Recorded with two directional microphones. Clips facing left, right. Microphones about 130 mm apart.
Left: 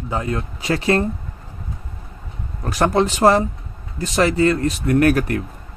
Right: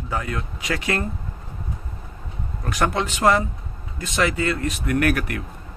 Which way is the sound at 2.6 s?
35° left (ahead or behind).